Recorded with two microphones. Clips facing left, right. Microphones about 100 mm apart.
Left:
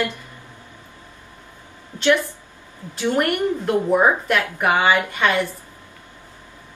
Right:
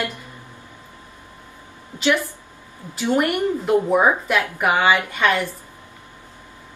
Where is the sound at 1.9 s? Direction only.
20° right (ahead or behind).